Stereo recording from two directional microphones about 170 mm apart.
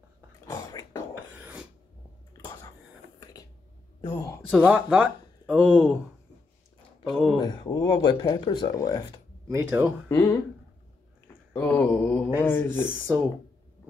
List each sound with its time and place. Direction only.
0.5 s a sound: 20° left (ahead or behind)
1.1 s beatboxing: 10° right (ahead or behind)
2.3 s a sound: 20° left (ahead or behind)
4.1 s speech: 20° left (ahead or behind)
4.6 s speech: 5° right (ahead or behind)
7.1 s speech: centre (ahead or behind)
7.3 s speech: 25° left (ahead or behind)
9.5 s speech: 15° right (ahead or behind)
10.0 s speech: 15° left (ahead or behind)
11.5 s speech: 10° left (ahead or behind)